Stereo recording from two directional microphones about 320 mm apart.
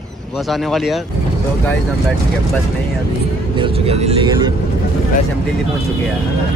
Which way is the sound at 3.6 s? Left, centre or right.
Centre.